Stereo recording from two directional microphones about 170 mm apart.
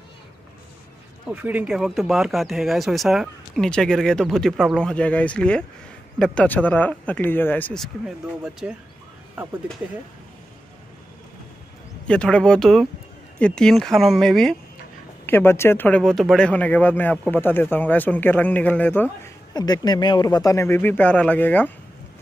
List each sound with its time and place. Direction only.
1.3 s speech: 10° right (ahead or behind); by 7.9 s 5° left (ahead or behind)
8.5 s speech: 5° right (ahead or behind)
12.1 s speech: 5° left (ahead or behind)
15.2 s speech: 15° left (ahead or behind)
19.5 s speech: 25° left (ahead or behind)